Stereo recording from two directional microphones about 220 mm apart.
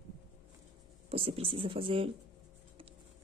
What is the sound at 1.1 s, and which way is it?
Speech, 25° right (ahead or behind).